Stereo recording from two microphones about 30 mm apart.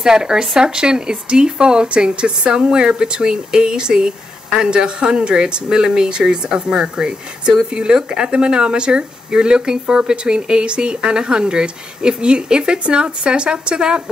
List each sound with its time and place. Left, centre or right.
0.0 s speech: right